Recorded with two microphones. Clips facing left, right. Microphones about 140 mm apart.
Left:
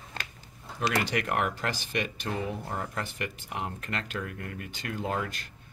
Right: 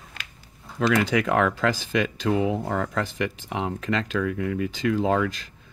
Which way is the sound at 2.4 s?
90° right.